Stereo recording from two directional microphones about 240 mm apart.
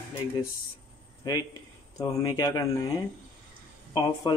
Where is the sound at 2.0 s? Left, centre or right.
Centre.